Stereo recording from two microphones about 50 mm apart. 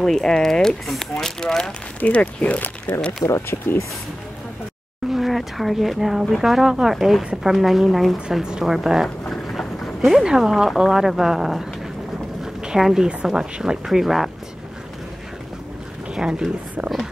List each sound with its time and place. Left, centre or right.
0.0 s speech: centre
2.0 s speech: left
3.3 s speech: left
5.1 s speech: centre
8.4 s speech: centre
9.2 s a sound: centre
10.0 s speech: centre
12.6 s speech: centre
16.2 s speech: centre